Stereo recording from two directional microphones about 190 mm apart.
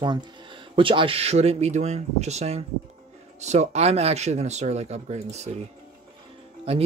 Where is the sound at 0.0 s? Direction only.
25° right (ahead or behind).